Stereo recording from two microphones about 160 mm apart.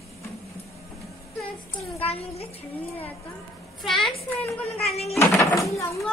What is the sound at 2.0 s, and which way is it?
Speech, 40° left (ahead or behind).